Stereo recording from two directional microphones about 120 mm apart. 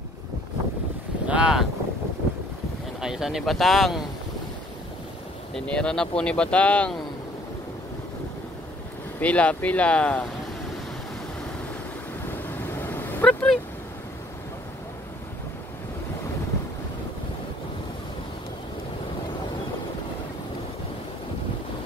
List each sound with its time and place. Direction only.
1.2 s boat: 10° right (ahead or behind)
3.0 s speech: 5° right (ahead or behind)
5.5 s speech: 5° left (ahead or behind)
9.2 s speech: 10° left (ahead or behind)
12.3 s vehicle: 15° left (ahead or behind)